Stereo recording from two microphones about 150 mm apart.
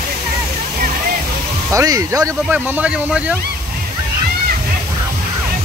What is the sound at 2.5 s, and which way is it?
Speech, 10° right (ahead or behind).